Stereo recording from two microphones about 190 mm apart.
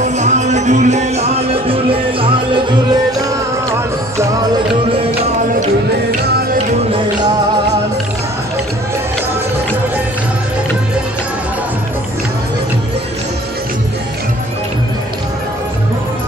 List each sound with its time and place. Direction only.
0.0 s music: 40° right (ahead or behind); by 4.5 s 20° right (ahead or behind)